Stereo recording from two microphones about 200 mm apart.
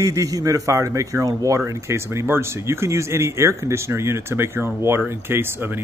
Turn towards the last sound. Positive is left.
turn(degrees=-10)  # may be behind; listen again after turning